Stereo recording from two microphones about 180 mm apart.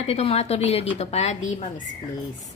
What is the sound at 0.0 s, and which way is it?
A woman's voice, 35° left (ahead or behind).